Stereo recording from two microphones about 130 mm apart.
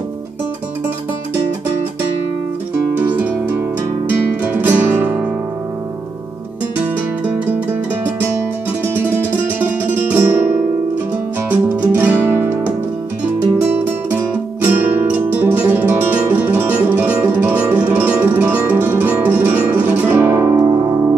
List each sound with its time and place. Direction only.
3.0 s music: 15° right (ahead or behind)
9.6 s music: 15° right (ahead or behind)
11.7 s guitar: 15° right (ahead or behind)
15.3 s music: 15° right (ahead or behind)